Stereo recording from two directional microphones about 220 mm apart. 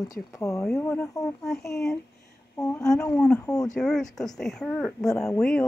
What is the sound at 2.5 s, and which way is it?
Speech, 15° left (ahead or behind).